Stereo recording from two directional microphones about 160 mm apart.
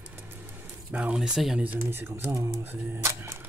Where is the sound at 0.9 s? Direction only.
10° right (ahead or behind).